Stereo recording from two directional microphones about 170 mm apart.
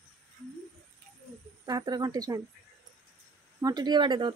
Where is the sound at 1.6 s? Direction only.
25° right (ahead or behind).